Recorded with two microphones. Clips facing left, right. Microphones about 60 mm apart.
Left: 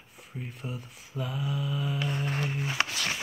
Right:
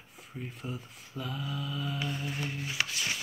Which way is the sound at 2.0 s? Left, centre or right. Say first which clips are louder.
Left 4 dB; left.